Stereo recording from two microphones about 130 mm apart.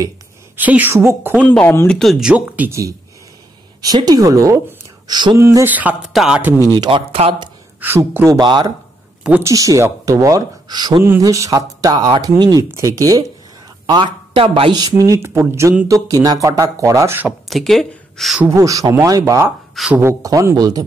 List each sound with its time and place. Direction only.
0.6 s a woman's voice: 15° right (ahead or behind)
1.4 s speech: 10° left (ahead or behind); by 2.7 s 10° right (ahead or behind)
3.8 s speech: 30° right (ahead or behind)
5.4 s a woman's voice: 20° right (ahead or behind)
6.6 s speech: 35° right (ahead or behind)
7.8 s speech: 15° right (ahead or behind)
8.4 s speech: 35° right (ahead or behind)
13.8 s speech: 35° right (ahead or behind)
15.0 s speech: 20° right (ahead or behind)
17.5 s speech: centre (ahead or behind)
18.5 s speech: 25° right (ahead or behind)